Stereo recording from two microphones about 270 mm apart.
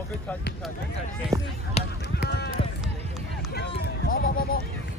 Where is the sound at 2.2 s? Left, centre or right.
Left.